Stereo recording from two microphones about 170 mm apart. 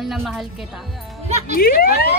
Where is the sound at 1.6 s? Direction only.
60° left (ahead or behind).